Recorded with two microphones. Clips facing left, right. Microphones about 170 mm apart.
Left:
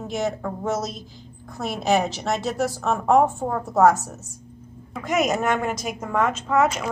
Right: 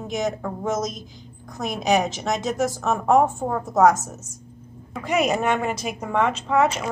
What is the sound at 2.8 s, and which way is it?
A woman's voice, 5° right (ahead or behind).